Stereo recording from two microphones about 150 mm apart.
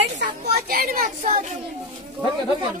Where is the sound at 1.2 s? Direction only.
50° right (ahead or behind).